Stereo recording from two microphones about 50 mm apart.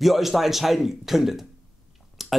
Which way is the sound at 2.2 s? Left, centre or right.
Centre.